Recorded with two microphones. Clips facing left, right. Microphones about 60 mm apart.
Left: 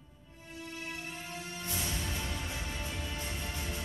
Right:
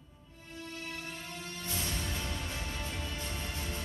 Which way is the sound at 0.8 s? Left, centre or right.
Centre.